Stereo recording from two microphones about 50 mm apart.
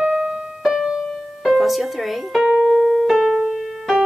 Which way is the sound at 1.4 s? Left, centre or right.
Centre.